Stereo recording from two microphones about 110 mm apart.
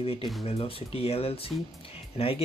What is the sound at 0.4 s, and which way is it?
Speech, 60° left (ahead or behind).